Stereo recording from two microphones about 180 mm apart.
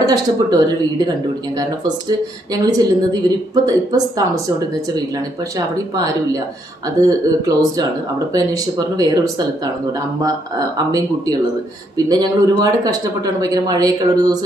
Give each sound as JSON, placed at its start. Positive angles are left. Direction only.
{"t": 0.0, "sound": "speech", "side_deg": -20}
{"t": 1.6, "sound": "speech", "side_deg": -20}
{"t": 7.0, "sound": "speech", "side_deg": -20}
{"t": 12.1, "sound": "speech", "side_deg": -20}